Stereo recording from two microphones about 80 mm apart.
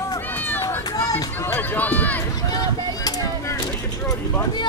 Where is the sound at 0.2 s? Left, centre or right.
Left.